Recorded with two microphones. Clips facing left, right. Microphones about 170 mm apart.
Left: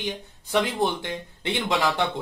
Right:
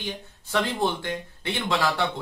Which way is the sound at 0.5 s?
15° left (ahead or behind).